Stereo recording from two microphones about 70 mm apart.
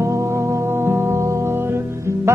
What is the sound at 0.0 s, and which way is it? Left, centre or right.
Music, right.